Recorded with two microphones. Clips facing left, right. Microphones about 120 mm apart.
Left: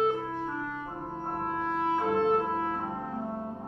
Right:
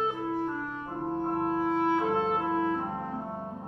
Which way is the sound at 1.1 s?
Centre (ahead or behind).